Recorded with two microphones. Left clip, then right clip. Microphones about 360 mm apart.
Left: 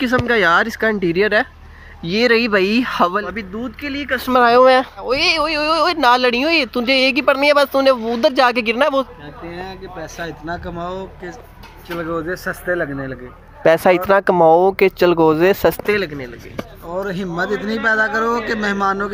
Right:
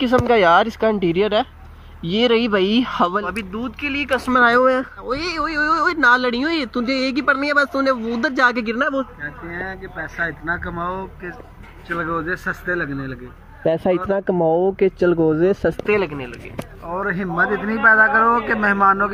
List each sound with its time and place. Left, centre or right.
0.3 s speech: centre
13.7 s speech: left
14.3 s speech: left
14.8 s speech: left
15.2 s speech: left
16.9 s speech: centre